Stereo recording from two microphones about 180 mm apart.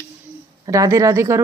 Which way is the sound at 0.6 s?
20° right (ahead or behind).